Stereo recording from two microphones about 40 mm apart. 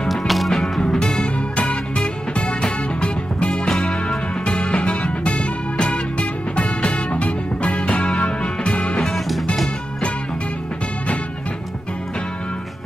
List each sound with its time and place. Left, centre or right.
0.3 s music: centre
0.8 s music: left
4.7 s music: left